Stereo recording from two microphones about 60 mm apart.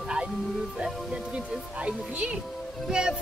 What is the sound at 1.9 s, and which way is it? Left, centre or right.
Speech, centre.